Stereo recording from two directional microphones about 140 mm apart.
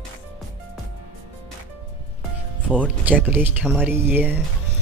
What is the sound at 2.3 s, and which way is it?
Speech, 10° right (ahead or behind).